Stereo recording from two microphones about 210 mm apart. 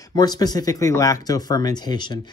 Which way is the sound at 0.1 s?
20° left (ahead or behind).